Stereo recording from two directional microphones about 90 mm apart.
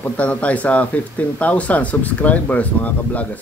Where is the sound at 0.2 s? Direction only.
15° left (ahead or behind).